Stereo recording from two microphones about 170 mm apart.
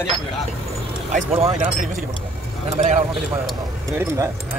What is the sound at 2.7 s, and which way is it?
Clip-clop, 45° right (ahead or behind).